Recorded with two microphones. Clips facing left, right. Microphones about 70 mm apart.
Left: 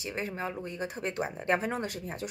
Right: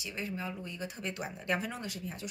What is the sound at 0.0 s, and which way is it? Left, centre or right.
Speech, left.